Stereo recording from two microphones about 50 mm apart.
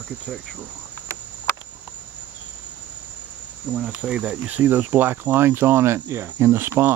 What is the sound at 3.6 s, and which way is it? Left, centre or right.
Cricket, centre.